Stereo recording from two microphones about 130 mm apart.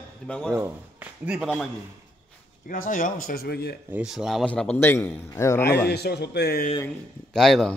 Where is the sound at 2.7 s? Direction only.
90° left.